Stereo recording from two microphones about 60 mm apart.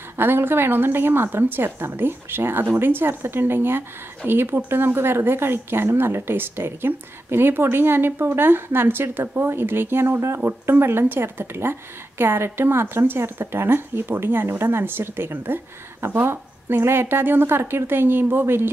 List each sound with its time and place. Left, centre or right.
0.2 s speech: right